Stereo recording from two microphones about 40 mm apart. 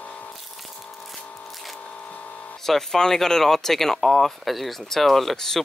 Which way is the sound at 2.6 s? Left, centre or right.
Centre.